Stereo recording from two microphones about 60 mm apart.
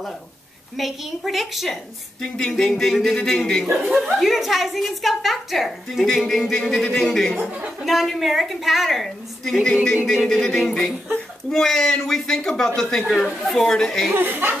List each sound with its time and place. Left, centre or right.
0.7 s a woman's voice: centre
2.3 s speech: centre
4.2 s a woman's voice: centre
7.3 s speech: right
7.8 s a woman's voice: centre
14.1 s speech: right